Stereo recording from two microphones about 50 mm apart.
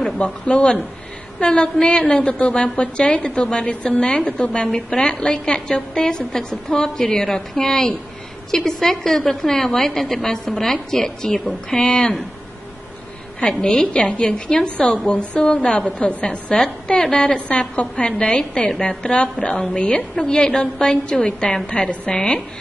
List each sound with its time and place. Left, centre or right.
0.2 s a woman's voice: left
4.6 s a woman's voice: centre
13.4 s a woman's voice: left